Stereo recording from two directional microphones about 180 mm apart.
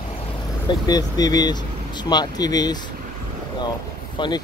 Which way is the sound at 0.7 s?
20° left (ahead or behind).